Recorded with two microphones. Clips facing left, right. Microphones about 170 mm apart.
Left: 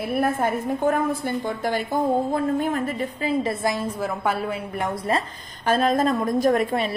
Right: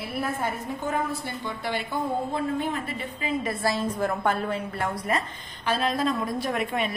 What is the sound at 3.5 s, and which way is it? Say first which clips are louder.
A woman's voice: left 1 dB; 15° left (ahead or behind).